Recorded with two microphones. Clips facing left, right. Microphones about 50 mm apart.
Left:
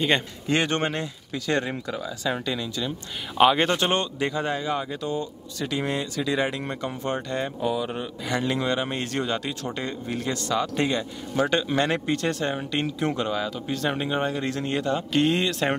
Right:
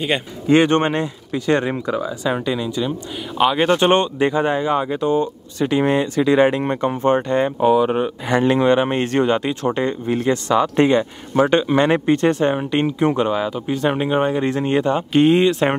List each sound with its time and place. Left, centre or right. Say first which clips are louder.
0.5 s speech: right 9 dB; right
3.3 s speech: right 1 dB; centre
3.7 s speech: right 9 dB; right